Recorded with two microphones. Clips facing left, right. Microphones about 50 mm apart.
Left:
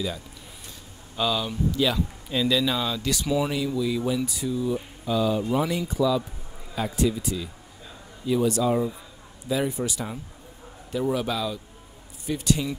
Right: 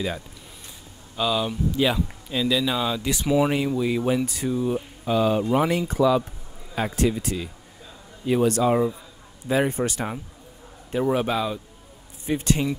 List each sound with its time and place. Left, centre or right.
1.1 s speech: centre
1.7 s speech: right
2.2 s speech: centre; by 3.5 s right
3.5 s a man's voice: right
10.9 s a man's voice: right